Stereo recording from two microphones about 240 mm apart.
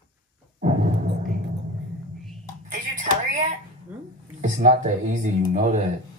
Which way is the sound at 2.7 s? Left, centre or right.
Right.